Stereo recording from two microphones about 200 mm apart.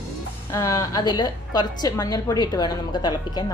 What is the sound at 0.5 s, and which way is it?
A woman's voice, 15° left (ahead or behind).